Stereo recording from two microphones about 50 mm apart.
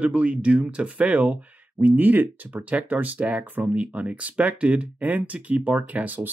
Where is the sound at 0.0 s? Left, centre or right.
Right.